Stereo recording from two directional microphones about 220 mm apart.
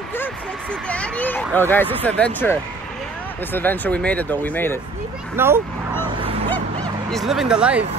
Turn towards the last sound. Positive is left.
turn(degrees=-5)  # may be behind; listen again after turning